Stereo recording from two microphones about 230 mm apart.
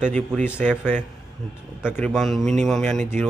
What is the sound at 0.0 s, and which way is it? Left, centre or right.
Speech, centre.